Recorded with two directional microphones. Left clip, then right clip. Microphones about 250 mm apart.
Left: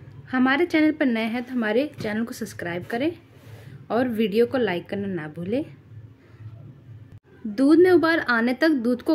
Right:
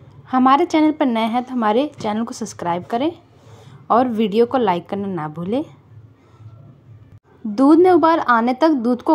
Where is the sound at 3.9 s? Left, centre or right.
Centre.